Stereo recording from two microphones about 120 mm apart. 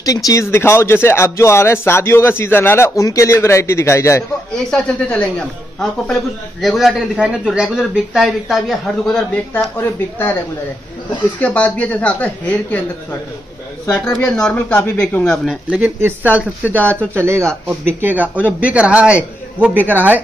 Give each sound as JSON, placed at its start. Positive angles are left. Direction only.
{"t": 0.0, "sound": "speech", "side_deg": 30}
{"t": 4.6, "sound": "speech", "side_deg": 10}
{"t": 11.3, "sound": "speech", "side_deg": 10}
{"t": 15.8, "sound": "a man's voice", "side_deg": -15}